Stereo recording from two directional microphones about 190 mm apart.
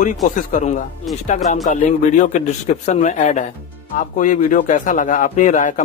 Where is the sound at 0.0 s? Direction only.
40° left (ahead or behind).